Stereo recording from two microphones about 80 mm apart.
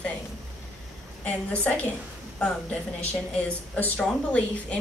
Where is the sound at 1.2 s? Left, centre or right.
Centre.